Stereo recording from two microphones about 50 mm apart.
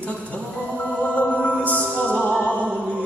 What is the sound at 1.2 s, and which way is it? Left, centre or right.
Music, left.